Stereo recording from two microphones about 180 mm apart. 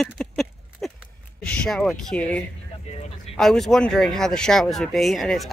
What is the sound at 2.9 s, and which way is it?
Speech, 40° left (ahead or behind).